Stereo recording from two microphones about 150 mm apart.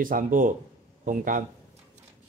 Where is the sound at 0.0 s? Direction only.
65° right (ahead or behind).